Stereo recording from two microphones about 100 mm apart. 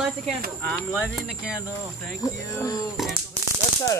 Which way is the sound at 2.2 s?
35° left (ahead or behind).